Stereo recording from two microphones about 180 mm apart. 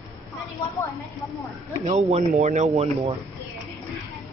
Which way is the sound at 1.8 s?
35° right (ahead or behind).